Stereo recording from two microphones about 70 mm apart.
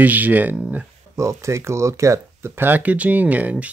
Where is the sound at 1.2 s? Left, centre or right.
Right.